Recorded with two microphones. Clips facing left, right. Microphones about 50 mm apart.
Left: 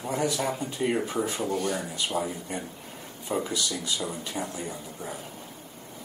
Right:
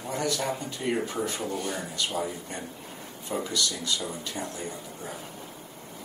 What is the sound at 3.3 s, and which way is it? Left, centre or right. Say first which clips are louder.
A man's voice: left 1 dB; centre.